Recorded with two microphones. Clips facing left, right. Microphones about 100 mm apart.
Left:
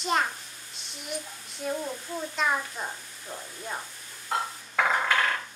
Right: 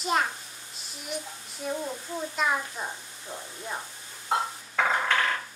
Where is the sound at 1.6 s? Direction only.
5° right (ahead or behind).